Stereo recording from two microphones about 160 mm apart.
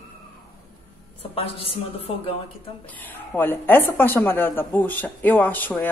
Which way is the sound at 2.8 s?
10° left (ahead or behind).